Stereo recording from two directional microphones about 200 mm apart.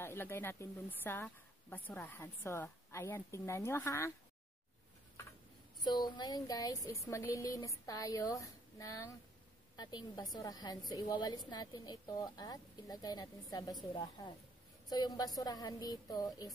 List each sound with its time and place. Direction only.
0.0 s a woman's voice: 10° left (ahead or behind)
5.9 s a woman's voice: 20° left (ahead or behind)